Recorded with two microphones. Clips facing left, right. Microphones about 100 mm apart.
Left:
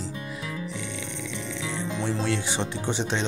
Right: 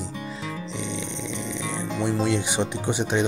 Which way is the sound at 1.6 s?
15° right (ahead or behind).